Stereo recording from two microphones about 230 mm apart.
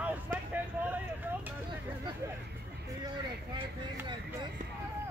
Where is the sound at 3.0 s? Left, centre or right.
Centre.